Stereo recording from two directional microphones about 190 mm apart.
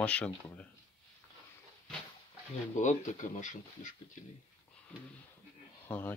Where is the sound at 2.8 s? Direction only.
40° left (ahead or behind).